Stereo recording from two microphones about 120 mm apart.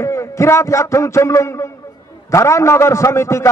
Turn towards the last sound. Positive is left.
turn(degrees=25)  # may be behind; listen again after turning